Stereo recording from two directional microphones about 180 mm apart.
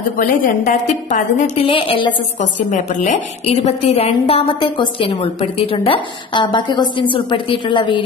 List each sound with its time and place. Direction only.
0.2 s a woman's voice: 45° left (ahead or behind)
1.6 s a woman's voice: 30° left (ahead or behind)
2.7 s a woman's voice: 40° left (ahead or behind)